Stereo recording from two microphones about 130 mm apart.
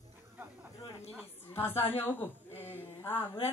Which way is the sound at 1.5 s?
15° left (ahead or behind).